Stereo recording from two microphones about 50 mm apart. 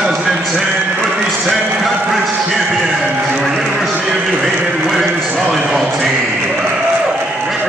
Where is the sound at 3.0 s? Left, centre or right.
Right.